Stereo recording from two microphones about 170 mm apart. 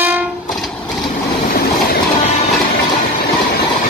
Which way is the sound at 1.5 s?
60° left (ahead or behind).